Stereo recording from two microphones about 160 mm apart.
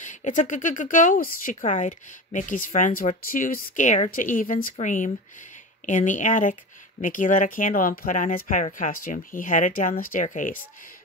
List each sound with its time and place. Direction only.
0.0 s speech: 50° left (ahead or behind)